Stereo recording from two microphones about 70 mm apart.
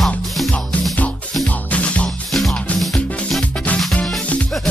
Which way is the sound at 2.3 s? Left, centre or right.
Centre.